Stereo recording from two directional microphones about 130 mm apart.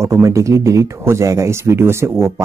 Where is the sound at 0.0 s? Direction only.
25° right (ahead or behind).